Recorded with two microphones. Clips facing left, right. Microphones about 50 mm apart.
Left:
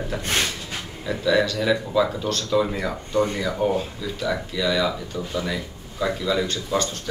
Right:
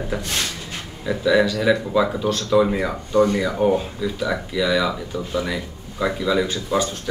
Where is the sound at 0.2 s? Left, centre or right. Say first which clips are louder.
Left 2 dB; left.